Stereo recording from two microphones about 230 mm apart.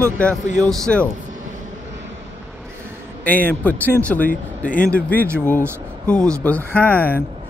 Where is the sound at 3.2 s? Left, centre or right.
Centre.